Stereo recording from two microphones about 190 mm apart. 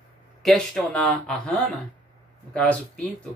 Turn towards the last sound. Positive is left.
turn(degrees=5)  # may be behind; listen again after turning